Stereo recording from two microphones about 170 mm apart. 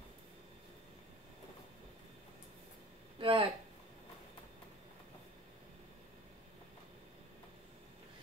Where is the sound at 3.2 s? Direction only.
30° right (ahead or behind).